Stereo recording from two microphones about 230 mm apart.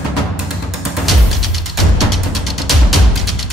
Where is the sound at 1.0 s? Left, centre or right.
Centre.